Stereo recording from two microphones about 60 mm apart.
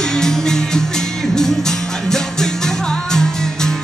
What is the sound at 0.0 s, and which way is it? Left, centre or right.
Music, centre.